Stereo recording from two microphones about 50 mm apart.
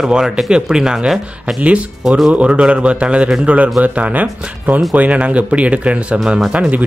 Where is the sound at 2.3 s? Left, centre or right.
Right.